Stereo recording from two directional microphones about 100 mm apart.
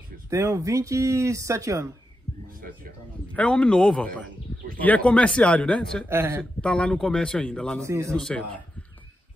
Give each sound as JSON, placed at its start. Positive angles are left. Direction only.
{"t": 0.3, "sound": "speech", "side_deg": -30}
{"t": 3.3, "sound": "speech", "side_deg": 10}
{"t": 6.0, "sound": "speech", "side_deg": -25}
{"t": 6.6, "sound": "speech", "side_deg": 10}
{"t": 7.8, "sound": "speech", "side_deg": -30}
{"t": 8.2, "sound": "speech", "side_deg": 10}